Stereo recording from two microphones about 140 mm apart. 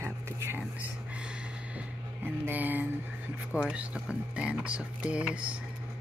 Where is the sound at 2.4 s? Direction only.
10° right (ahead or behind).